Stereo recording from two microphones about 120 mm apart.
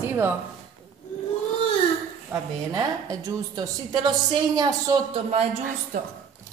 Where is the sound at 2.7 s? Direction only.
30° right (ahead or behind).